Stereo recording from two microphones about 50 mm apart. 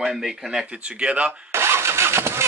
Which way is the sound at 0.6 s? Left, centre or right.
Right.